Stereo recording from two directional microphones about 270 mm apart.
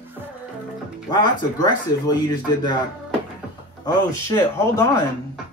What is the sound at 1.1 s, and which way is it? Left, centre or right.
Speech, centre.